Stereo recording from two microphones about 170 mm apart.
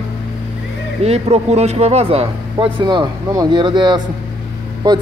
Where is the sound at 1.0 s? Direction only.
40° right (ahead or behind).